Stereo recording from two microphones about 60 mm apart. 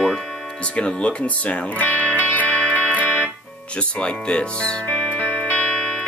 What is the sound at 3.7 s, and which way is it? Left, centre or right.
Speech, centre.